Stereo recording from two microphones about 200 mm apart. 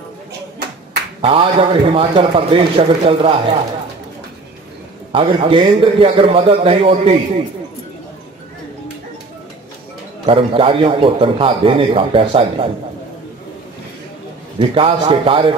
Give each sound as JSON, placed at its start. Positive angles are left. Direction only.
{"t": 1.2, "sound": "a man's voice", "side_deg": -25}
{"t": 5.1, "sound": "a man's voice", "side_deg": -25}
{"t": 10.2, "sound": "a man's voice", "side_deg": -25}
{"t": 14.6, "sound": "a man's voice", "side_deg": -25}